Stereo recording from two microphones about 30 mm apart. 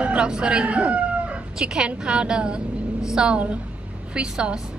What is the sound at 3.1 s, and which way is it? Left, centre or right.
Speech, right.